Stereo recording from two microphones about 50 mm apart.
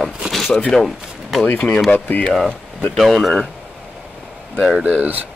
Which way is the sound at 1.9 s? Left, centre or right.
Left.